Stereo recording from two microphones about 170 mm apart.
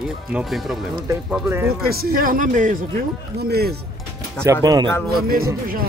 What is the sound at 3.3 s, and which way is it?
Speech, 70° right (ahead or behind).